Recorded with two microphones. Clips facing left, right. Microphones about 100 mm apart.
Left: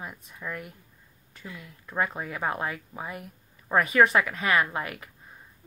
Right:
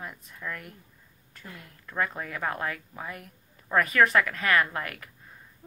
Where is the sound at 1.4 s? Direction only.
50° right (ahead or behind).